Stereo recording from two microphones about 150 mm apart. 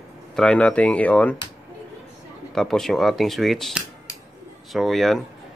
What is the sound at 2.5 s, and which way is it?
Speech, centre (ahead or behind).